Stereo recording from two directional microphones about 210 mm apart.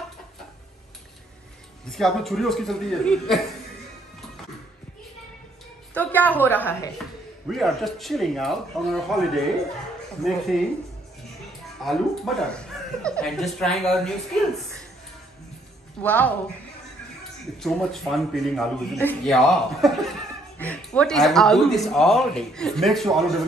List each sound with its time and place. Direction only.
1.9 s speech: centre (ahead or behind)
5.9 s a woman's voice: 10° left (ahead or behind)
11.8 s speech: centre (ahead or behind)
16.0 s a woman's voice: 5° left (ahead or behind)
17.6 s speech: centre (ahead or behind)